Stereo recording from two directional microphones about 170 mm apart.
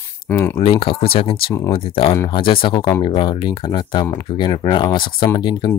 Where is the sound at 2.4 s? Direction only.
30° left (ahead or behind).